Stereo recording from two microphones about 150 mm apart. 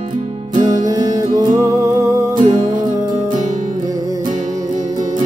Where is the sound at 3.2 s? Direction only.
50° right (ahead or behind).